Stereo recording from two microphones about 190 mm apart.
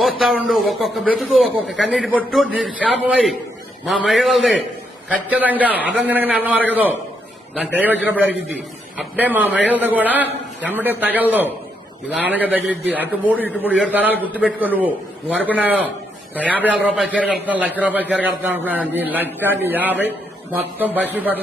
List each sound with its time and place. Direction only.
0.2 s a man's voice: centre (ahead or behind)
16.3 s a man's voice: 10° left (ahead or behind)
16.8 s a man's voice: 5° right (ahead or behind)